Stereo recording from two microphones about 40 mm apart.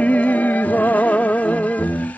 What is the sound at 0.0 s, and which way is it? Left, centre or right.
Music, left.